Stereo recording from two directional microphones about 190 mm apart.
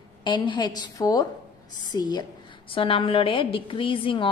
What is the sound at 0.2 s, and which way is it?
A woman's voice, 25° left (ahead or behind).